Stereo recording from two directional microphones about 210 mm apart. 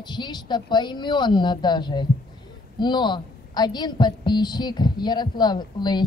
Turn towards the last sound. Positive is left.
turn(degrees=20)  # may be behind; listen again after turning